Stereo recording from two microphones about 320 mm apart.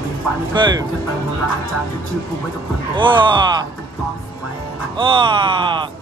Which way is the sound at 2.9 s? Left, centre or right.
Centre.